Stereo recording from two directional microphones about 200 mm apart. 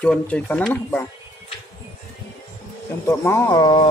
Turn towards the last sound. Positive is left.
turn(degrees=20)  # may be behind; listen again after turning